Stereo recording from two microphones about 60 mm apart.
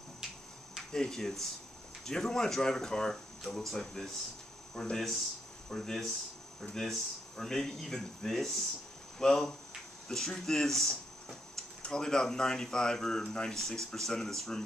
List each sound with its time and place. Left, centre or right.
0.9 s speech: centre